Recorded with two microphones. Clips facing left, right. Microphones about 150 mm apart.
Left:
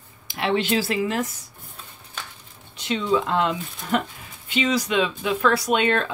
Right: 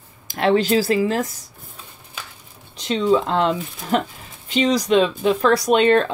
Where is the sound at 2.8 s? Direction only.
40° right (ahead or behind).